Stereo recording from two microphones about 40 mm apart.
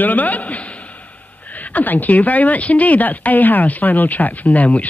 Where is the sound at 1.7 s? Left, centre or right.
Left.